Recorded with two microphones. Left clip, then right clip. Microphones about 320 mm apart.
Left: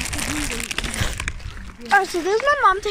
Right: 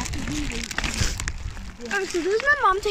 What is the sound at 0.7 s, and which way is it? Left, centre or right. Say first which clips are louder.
Crumpling: left 1 dB; centre.